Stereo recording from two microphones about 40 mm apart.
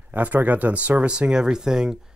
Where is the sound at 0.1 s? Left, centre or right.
Right.